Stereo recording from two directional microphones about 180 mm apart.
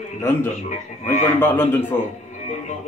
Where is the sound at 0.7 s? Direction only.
40° left (ahead or behind).